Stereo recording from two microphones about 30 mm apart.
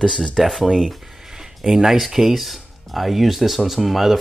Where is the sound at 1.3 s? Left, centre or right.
Centre.